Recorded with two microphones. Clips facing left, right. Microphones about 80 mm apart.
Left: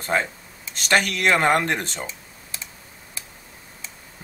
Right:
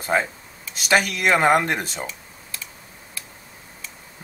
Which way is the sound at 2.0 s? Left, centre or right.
Left.